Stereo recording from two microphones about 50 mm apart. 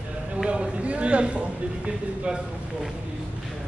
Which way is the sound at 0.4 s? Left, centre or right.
Centre.